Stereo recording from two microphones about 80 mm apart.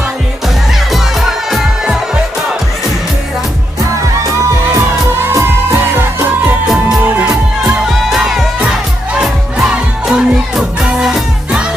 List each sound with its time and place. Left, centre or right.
1.5 s music: centre
5.3 s music: right
7.0 s music: right
7.9 s music: centre